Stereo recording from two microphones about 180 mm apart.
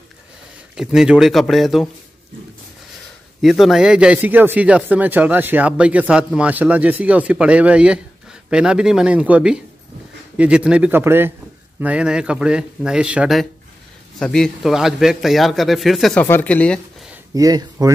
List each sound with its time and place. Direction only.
0.7 s a man's voice: 5° right (ahead or behind)
3.3 s a man's voice: centre (ahead or behind)
17.3 s speech: 20° right (ahead or behind)